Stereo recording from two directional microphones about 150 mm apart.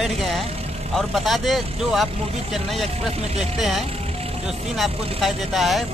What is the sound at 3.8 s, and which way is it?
Music, 40° right (ahead or behind).